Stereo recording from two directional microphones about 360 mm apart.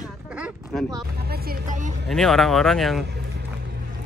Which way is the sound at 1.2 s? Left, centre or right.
Right.